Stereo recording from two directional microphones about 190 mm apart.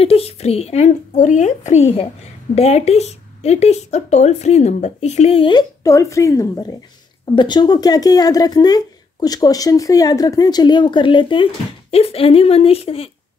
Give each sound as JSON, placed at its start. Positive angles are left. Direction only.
{"t": 0.0, "sound": "speech", "side_deg": 30}